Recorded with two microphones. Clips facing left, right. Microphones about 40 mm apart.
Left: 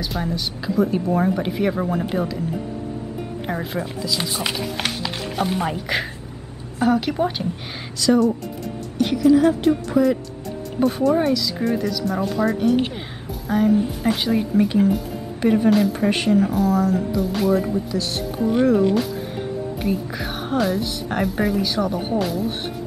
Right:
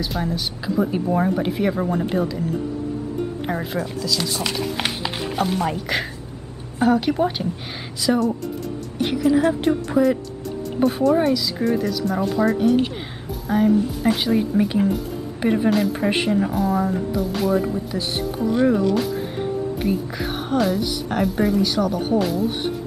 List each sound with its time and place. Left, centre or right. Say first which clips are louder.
0.0 s a woman's voice: right 1 dB; centre
3.7 s speech: right 1 dB; centre
4.6 s speech: right 1 dB; centre
5.3 s chopping: even; centre
5.7 s a woman's voice: even; centre
17.2 s a woman's voice: even; centre
17.9 s speech: left 2 dB; centre
18.4 s speech: left 1 dB; centre
19.8 s a woman's voice: right 1 dB; centre
21.8 s speech: right 2 dB; centre
22.2 s a woman's voice: right 2 dB; centre